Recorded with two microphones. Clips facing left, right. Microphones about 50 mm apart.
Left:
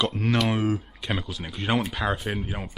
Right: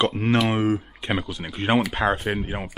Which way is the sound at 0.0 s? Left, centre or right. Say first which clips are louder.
Right 3 dB; right.